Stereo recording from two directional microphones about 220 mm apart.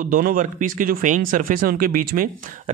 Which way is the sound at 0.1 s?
40° right (ahead or behind).